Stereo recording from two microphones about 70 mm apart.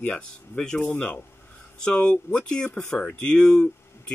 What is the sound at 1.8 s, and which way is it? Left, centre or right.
Speech, centre.